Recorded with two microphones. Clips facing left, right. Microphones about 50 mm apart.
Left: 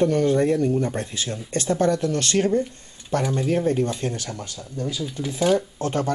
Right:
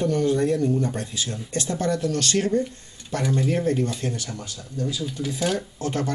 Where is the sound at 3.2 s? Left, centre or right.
Centre.